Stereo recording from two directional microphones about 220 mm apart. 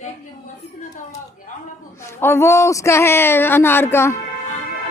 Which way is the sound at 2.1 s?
10° left (ahead or behind).